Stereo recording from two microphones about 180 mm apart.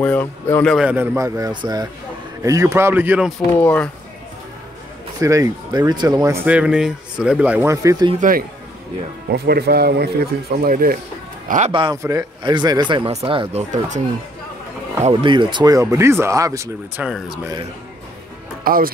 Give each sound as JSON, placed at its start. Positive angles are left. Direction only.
{"t": 0.0, "sound": "speech", "side_deg": 10}
{"t": 0.7, "sound": "speech", "side_deg": -10}
{"t": 3.6, "sound": "speech", "side_deg": 5}
{"t": 5.2, "sound": "speech", "side_deg": -20}
{"t": 6.4, "sound": "speech", "side_deg": -5}
{"t": 8.2, "sound": "a man's voice", "side_deg": -50}
{"t": 9.3, "sound": "a man's voice", "side_deg": -60}
{"t": 11.7, "sound": "speech", "side_deg": -25}
{"t": 15.0, "sound": "speech", "side_deg": -25}
{"t": 17.0, "sound": "speech", "side_deg": -5}
{"t": 18.6, "sound": "speech", "side_deg": -55}